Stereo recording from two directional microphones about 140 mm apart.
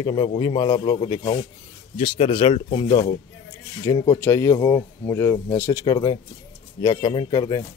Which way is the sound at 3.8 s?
25° left (ahead or behind).